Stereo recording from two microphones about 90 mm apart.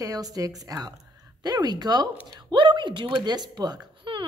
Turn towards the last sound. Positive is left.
turn(degrees=-60)  # may be behind; listen again after turning